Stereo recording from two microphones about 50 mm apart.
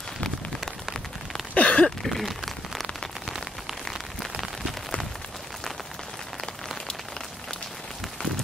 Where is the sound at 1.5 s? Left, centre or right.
Left.